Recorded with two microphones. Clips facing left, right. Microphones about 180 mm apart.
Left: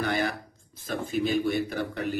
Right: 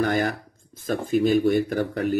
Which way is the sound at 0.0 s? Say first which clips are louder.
Right 5 dB; 45° right (ahead or behind).